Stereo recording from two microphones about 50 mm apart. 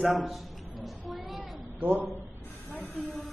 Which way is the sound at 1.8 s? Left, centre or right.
Right.